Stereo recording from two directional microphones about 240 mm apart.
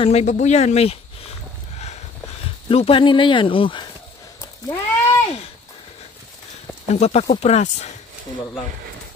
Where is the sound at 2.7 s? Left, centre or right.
Left.